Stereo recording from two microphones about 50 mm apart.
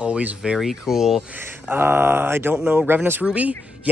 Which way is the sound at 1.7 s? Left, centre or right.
Right.